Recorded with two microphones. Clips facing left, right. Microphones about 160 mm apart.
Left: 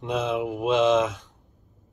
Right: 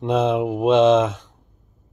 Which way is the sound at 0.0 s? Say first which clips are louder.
Right 7 dB; 30° right (ahead or behind).